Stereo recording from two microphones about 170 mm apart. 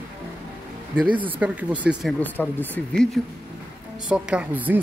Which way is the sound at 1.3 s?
10° right (ahead or behind).